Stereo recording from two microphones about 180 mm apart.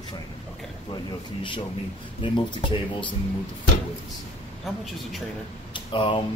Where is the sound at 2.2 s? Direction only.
25° left (ahead or behind).